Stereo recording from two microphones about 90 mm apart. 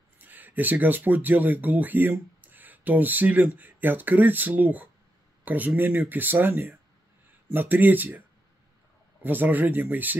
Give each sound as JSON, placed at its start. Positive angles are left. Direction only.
{"t": 0.2, "sound": "speech", "side_deg": -20}
{"t": 9.2, "sound": "speech", "side_deg": -20}